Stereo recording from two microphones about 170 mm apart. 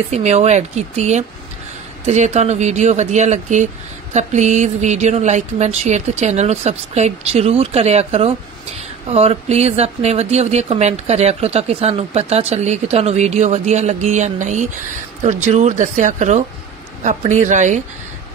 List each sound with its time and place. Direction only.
0.1 s speech: 40° right (ahead or behind)